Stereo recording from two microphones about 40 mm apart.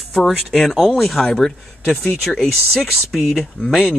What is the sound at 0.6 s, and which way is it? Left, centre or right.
Speech, centre.